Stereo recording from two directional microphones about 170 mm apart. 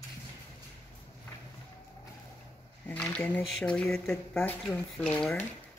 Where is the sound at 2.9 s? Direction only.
10° left (ahead or behind).